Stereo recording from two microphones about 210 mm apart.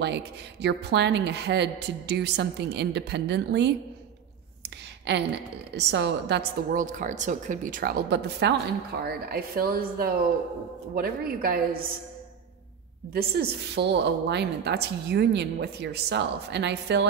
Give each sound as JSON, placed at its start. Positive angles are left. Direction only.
{"t": 0.0, "sound": "a woman's voice", "side_deg": -55}
{"t": 4.6, "sound": "a sound", "side_deg": -55}
{"t": 5.8, "sound": "a woman's voice", "side_deg": -55}
{"t": 6.7, "sound": "a woman's voice", "side_deg": -40}
{"t": 13.1, "sound": "a woman's voice", "side_deg": -50}